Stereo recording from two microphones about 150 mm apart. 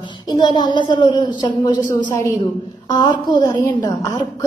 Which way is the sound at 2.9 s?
30° left (ahead or behind).